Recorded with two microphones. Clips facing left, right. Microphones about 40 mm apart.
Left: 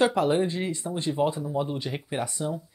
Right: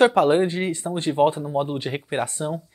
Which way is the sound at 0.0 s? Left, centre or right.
Right.